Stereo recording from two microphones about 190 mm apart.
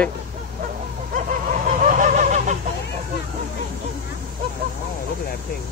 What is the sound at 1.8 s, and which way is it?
Goose, 40° right (ahead or behind).